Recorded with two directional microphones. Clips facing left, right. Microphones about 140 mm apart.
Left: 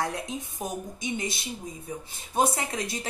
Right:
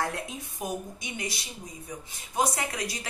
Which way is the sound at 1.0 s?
25° left (ahead or behind).